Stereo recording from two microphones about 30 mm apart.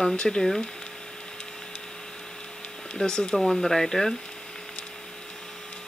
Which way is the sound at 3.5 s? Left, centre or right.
Centre.